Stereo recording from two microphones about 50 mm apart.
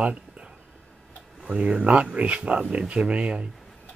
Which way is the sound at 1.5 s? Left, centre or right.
Right.